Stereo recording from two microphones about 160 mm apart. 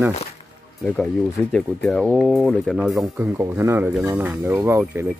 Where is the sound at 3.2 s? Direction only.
15° right (ahead or behind).